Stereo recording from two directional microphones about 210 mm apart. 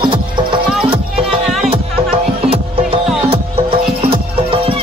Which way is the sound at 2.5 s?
25° right (ahead or behind).